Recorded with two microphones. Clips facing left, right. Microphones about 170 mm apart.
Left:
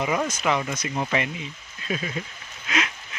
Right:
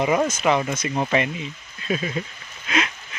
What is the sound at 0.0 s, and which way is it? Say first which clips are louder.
Speech: right 5 dB; 30° right (ahead or behind).